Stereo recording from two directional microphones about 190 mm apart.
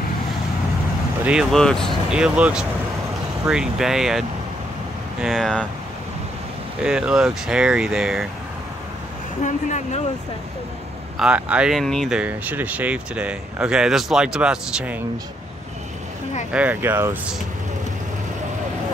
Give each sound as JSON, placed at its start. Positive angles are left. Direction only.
{"t": 1.2, "sound": "speech", "side_deg": -5}
{"t": 6.8, "sound": "speech", "side_deg": -5}
{"t": 9.4, "sound": "speech", "side_deg": 40}
{"t": 11.1, "sound": "speech", "side_deg": -5}
{"t": 16.5, "sound": "speech", "side_deg": -10}